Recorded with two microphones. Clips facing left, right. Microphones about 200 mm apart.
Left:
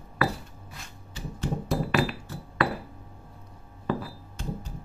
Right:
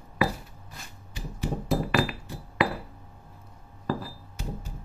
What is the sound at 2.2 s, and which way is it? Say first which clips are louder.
Glass: right 1 dB; 15° right (ahead or behind).